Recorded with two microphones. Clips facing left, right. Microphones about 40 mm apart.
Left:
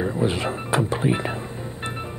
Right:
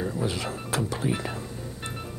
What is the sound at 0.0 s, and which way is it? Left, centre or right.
Speech, left.